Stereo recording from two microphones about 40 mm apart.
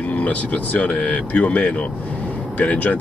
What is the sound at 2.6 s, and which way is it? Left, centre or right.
Speech, left.